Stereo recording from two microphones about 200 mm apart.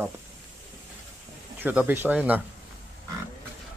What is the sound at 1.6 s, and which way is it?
Speech, 10° right (ahead or behind).